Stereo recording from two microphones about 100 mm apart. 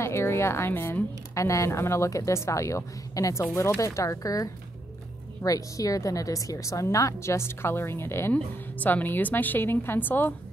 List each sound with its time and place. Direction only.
0.0 s a woman's voice: 25° left (ahead or behind)